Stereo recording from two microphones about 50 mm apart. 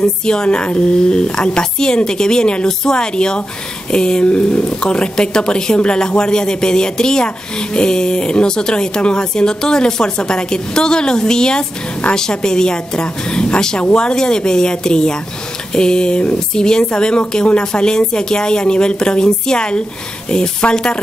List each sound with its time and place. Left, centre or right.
0.0 s speech: centre